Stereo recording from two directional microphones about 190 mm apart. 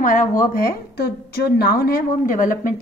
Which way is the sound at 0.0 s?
45° left (ahead or behind).